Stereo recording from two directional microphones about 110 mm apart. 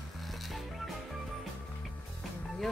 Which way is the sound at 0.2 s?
Centre (ahead or behind).